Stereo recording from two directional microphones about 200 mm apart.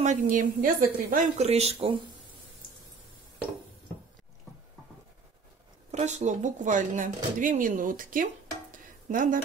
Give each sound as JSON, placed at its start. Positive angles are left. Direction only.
{"t": 0.0, "sound": "speech", "side_deg": -40}
{"t": 5.9, "sound": "speech", "side_deg": -35}